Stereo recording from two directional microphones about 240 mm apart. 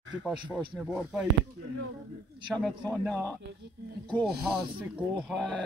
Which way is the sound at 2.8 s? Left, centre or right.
Centre.